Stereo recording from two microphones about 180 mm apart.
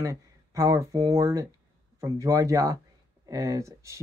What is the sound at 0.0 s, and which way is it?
Speech, 20° right (ahead or behind).